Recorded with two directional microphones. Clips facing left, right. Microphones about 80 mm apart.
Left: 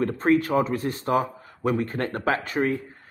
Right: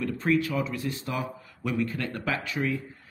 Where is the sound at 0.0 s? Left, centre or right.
Left.